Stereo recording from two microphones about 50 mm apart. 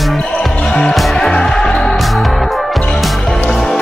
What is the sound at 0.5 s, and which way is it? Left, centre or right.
Music, left.